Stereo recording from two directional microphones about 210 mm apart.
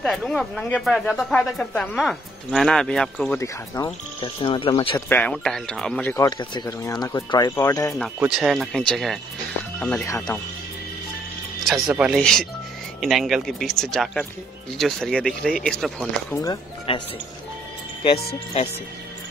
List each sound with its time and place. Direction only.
0.0 s speech: centre (ahead or behind)
3.3 s speech: 15° left (ahead or behind)
5.1 s speech: 5° left (ahead or behind)
6.1 s speech: 20° left (ahead or behind)
8.2 s speech: centre (ahead or behind); by 10.4 s 15° left (ahead or behind)
11.6 s speech: centre (ahead or behind)
16.9 s speech: 25° left (ahead or behind)